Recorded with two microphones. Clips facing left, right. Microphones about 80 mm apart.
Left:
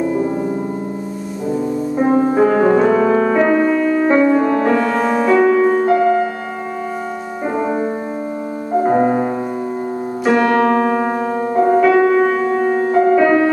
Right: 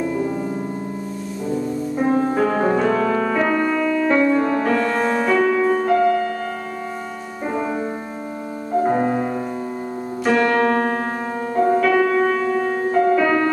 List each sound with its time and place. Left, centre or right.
0.0 s music: left
1.5 s music: centre
3.9 s music: left
7.5 s music: left
10.2 s piano: centre
12.3 s music: centre